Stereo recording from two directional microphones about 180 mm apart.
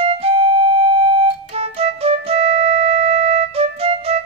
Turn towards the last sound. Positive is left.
turn(degrees=-35)  # may be behind; listen again after turning